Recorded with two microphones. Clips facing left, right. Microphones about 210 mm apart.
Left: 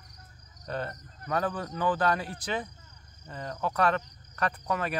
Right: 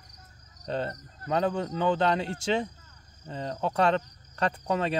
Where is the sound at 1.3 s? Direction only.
25° right (ahead or behind).